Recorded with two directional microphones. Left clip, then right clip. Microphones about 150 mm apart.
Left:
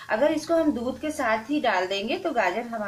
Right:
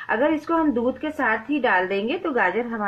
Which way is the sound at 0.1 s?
35° right (ahead or behind).